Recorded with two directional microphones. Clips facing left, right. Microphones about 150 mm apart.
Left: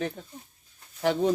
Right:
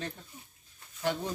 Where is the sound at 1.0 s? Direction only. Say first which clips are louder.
Left 8 dB; 70° left (ahead or behind).